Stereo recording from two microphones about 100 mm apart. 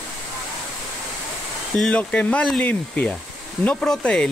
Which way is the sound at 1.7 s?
10° left (ahead or behind).